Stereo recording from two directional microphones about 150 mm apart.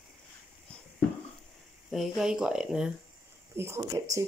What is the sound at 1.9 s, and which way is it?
Speech, centre (ahead or behind).